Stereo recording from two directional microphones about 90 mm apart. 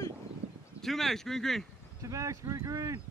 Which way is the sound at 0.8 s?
5° left (ahead or behind).